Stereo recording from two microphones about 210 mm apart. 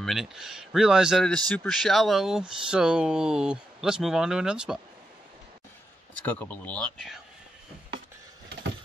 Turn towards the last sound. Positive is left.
turn(degrees=0)  # may be behind; listen again after turning